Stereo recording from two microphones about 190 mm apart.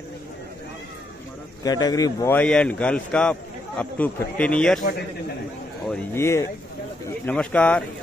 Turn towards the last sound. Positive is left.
turn(degrees=5)  # may be behind; listen again after turning